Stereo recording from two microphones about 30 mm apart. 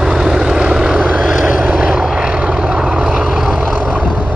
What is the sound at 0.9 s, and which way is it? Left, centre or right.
Vehicle, right.